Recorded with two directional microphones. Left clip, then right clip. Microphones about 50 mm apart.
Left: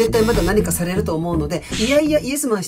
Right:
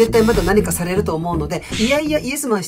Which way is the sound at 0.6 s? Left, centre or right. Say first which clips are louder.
Right 2 dB; right.